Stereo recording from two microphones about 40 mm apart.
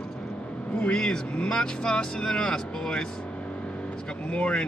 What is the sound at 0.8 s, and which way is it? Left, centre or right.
Speech, left.